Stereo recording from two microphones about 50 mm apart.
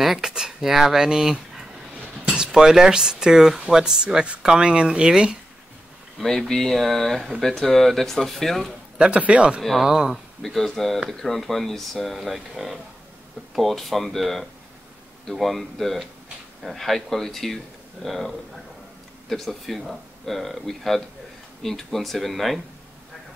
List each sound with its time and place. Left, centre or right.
0.0 s a sound: centre
0.3 s speech: centre
6.1 s speech: centre
8.9 s a man's voice: centre
9.6 s speech: centre
9.8 s speech: centre
10.1 s speech: centre